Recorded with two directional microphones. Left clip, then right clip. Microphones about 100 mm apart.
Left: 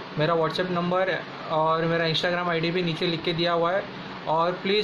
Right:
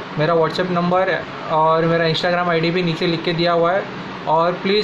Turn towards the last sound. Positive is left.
turn(degrees=10)  # may be behind; listen again after turning